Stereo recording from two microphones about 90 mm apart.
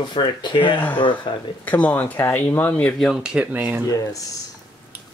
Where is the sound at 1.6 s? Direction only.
20° left (ahead or behind).